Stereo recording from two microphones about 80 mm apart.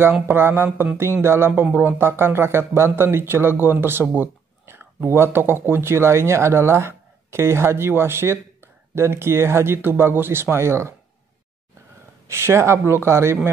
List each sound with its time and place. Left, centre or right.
0.3 s mantra: right
0.9 s speech: right
12.3 s speech: right